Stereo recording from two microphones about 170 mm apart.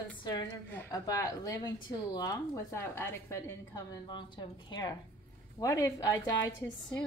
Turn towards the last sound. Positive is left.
turn(degrees=20)  # may be behind; listen again after turning